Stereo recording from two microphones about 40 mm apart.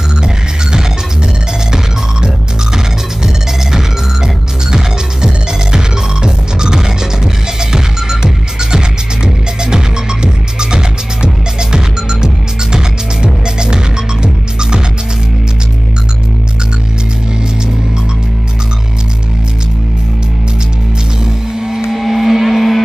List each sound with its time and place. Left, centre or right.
0.2 s music: centre
3.7 s music: centre
21.5 s music: centre
21.9 s a sound: centre